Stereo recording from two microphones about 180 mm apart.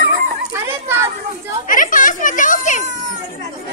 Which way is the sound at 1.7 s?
50° left (ahead or behind).